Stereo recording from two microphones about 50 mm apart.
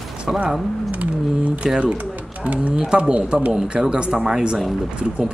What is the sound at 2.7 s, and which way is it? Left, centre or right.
Speech, centre.